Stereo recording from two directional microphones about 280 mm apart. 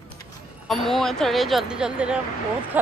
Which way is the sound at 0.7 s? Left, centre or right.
Centre.